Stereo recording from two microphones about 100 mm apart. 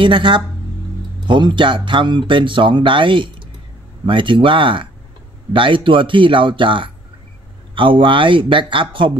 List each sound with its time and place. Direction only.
0.0 s speech: 55° right (ahead or behind)